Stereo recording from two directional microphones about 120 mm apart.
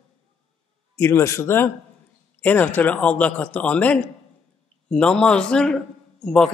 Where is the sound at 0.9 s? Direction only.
20° left (ahead or behind); by 6.5 s 5° left (ahead or behind).